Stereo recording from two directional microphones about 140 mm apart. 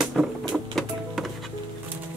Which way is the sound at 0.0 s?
Centre (ahead or behind).